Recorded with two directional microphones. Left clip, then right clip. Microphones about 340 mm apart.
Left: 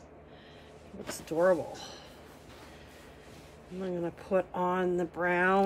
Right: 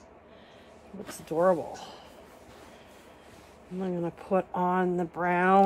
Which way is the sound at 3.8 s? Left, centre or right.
Centre.